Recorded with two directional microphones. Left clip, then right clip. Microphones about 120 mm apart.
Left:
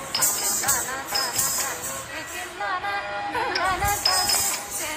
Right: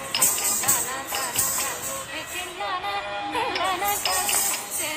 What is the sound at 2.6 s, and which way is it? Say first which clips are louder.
Music: left 2 dB; 15° right (ahead or behind).